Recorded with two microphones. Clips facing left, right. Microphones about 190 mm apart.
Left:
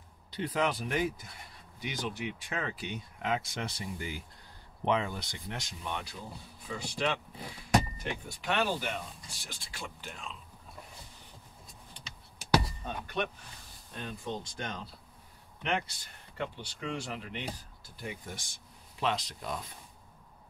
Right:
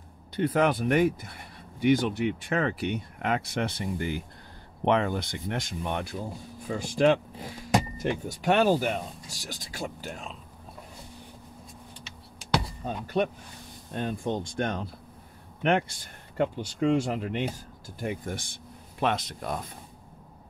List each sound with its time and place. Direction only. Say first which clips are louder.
0.4 s speech: right 7 dB; 55° right (ahead or behind)
8.3 s speech: right 9 dB; 40° right (ahead or behind)
12.8 s speech: right 7 dB; 35° right (ahead or behind)
13.9 s speech: right 9 dB; 50° right (ahead or behind)